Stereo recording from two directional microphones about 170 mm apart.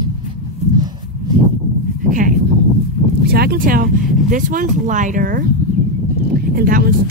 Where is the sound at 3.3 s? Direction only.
65° right (ahead or behind).